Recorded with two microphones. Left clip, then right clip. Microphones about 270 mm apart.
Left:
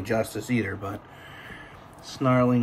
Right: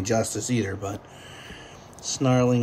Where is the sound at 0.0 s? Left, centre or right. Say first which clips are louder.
Right 2 dB; centre.